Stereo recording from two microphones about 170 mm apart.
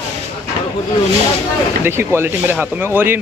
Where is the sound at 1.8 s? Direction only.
15° right (ahead or behind).